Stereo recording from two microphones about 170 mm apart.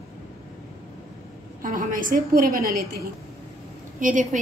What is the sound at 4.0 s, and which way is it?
Speech, 50° right (ahead or behind).